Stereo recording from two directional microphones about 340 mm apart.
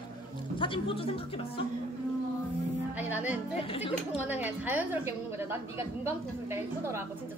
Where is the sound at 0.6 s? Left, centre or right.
Centre.